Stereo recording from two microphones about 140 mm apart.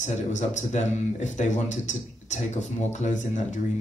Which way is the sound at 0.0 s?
55° left (ahead or behind).